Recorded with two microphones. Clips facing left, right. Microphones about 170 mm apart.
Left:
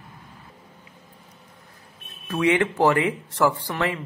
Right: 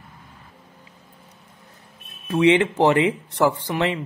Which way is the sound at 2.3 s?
20° right (ahead or behind).